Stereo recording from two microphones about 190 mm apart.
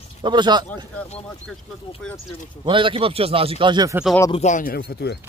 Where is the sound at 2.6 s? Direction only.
25° right (ahead or behind).